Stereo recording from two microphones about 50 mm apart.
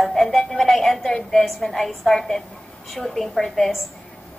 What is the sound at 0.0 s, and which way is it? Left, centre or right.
Music, centre.